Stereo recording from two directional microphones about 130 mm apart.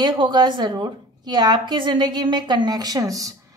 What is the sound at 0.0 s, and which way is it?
A woman's voice, 35° right (ahead or behind).